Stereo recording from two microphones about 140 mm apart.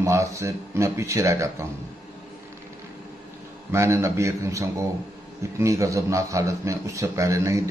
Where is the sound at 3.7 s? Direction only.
20° right (ahead or behind).